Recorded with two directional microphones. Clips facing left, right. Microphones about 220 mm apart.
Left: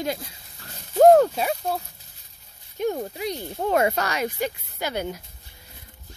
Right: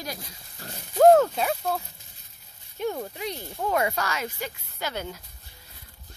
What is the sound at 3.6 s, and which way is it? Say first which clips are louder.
Speech: left 4 dB; 35° left (ahead or behind).